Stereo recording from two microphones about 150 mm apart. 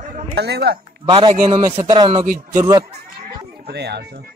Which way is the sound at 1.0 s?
30° right (ahead or behind).